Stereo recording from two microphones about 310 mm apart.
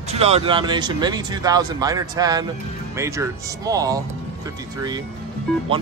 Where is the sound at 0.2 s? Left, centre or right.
Centre.